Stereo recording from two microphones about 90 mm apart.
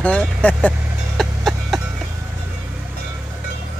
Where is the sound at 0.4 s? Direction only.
15° left (ahead or behind).